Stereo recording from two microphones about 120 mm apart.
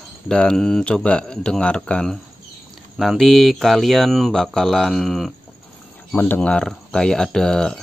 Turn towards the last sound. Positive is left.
turn(degrees=5)  # may be behind; listen again after turning